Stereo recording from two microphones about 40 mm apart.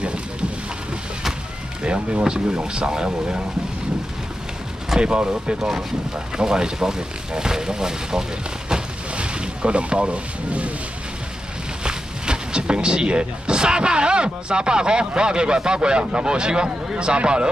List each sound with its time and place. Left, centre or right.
0.0 s a sound: right
1.8 s speech: right
2.2 s speech: centre
5.0 s speech: right
5.6 s speech: centre; by 10.7 s right
11.8 s speech: right